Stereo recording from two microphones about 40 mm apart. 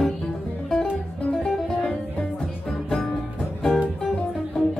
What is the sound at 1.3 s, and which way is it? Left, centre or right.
Music, left.